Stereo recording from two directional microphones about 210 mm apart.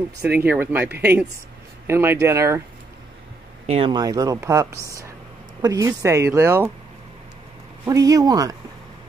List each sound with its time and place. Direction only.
0.2 s speech: 10° right (ahead or behind)
3.6 s speech: 25° right (ahead or behind); by 6.7 s 10° right (ahead or behind)
7.8 s speech: 15° right (ahead or behind)